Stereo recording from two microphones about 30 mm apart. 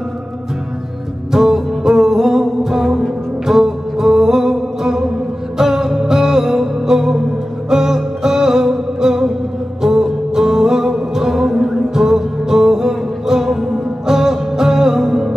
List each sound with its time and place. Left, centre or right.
1.3 s music: centre